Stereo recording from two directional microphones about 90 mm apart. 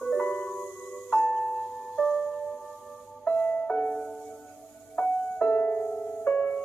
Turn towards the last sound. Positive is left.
turn(degrees=15)  # may be behind; listen again after turning